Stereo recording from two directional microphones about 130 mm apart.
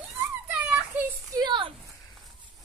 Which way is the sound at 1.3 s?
35° right (ahead or behind).